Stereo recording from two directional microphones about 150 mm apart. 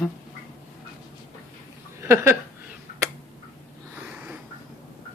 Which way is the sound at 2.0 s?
15° right (ahead or behind).